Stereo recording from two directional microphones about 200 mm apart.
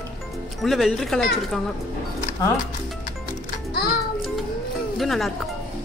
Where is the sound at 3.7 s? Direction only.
50° left (ahead or behind).